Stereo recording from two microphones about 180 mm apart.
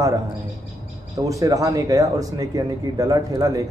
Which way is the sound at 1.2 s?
20° right (ahead or behind).